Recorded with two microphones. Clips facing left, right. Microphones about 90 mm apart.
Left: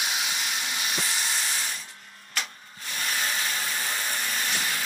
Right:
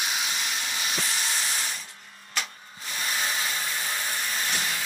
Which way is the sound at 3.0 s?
Centre (ahead or behind).